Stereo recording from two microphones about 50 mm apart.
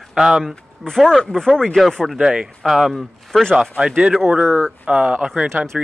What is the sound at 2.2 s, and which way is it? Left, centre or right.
Speech, centre.